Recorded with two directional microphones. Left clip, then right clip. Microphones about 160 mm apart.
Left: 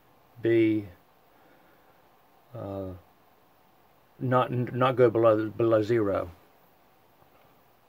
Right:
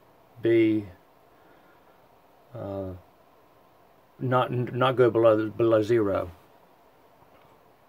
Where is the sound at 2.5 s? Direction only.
20° left (ahead or behind).